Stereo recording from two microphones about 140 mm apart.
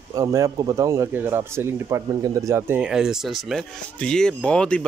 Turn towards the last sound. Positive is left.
turn(degrees=5)  # may be behind; listen again after turning